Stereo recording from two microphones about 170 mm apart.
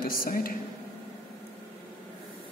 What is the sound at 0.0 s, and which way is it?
Speech, 55° left (ahead or behind).